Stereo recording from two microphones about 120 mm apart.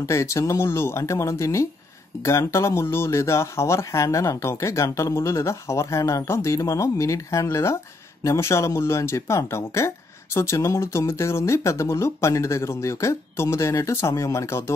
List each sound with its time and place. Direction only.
0.0 s speech: 25° left (ahead or behind)